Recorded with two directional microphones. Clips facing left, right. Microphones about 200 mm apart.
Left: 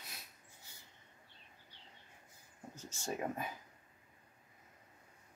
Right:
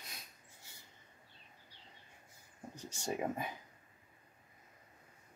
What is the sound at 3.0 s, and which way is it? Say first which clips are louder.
Speech: right 2 dB; 10° right (ahead or behind).